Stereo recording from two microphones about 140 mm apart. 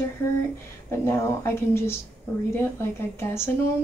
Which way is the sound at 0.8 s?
15° left (ahead or behind).